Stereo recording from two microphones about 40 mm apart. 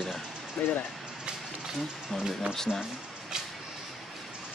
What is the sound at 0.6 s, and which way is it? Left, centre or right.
Speech, left.